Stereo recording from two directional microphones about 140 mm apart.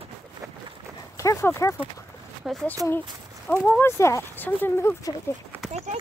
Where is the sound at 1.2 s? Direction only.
20° left (ahead or behind).